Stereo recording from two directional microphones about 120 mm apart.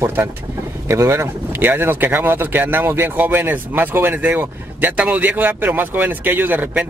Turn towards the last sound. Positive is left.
turn(degrees=-10)  # may be behind; listen again after turning